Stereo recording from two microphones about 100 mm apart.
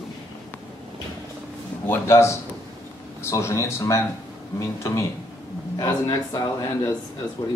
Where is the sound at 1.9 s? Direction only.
25° left (ahead or behind).